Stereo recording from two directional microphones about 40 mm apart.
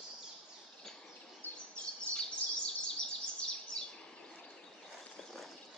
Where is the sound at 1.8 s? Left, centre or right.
Left.